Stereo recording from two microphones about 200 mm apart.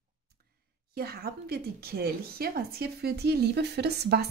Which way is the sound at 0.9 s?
50° right (ahead or behind).